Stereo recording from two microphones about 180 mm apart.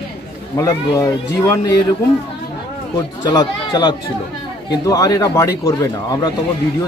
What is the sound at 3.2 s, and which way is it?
A man's voice, 25° left (ahead or behind).